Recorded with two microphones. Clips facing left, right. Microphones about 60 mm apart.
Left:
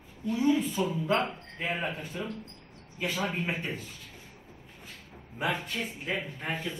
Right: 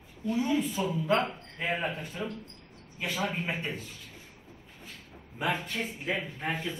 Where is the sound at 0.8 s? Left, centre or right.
Centre.